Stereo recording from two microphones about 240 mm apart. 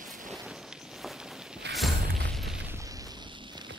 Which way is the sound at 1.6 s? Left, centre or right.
Right.